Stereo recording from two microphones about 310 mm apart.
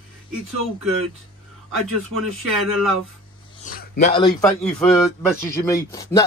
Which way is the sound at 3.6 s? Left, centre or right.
Left.